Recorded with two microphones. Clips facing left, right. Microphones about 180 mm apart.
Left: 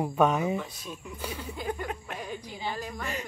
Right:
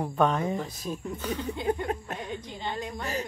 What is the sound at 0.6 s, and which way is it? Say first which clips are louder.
Speech: right 5 dB; 40° right (ahead or behind).